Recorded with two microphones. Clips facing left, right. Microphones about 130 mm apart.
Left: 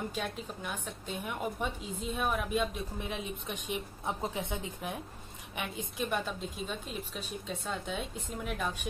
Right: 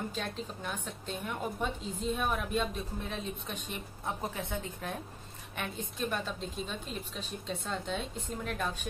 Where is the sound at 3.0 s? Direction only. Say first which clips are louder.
Even; 15° left (ahead or behind).